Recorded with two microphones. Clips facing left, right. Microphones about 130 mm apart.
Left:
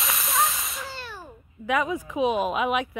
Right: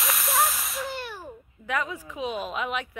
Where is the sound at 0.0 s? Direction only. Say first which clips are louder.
Even; centre (ahead or behind).